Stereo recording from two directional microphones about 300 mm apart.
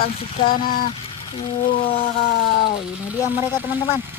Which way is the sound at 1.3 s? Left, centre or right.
Centre.